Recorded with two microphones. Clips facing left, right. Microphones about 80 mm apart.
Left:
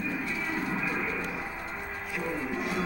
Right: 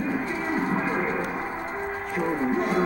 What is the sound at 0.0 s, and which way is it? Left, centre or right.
Livestock, right.